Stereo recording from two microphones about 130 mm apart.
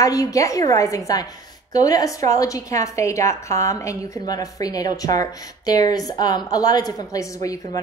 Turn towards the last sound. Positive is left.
turn(degrees=25)  # may be behind; listen again after turning